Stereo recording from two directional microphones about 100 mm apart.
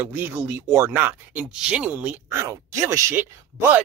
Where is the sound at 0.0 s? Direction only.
20° right (ahead or behind).